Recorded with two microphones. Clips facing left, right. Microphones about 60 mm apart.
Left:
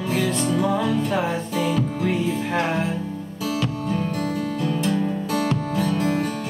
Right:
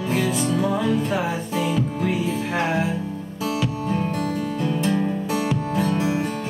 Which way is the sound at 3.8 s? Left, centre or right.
Centre.